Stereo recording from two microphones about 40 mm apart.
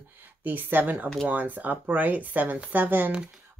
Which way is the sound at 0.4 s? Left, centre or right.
Right.